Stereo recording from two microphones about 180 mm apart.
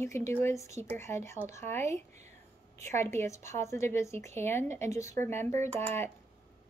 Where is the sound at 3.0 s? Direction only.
15° left (ahead or behind).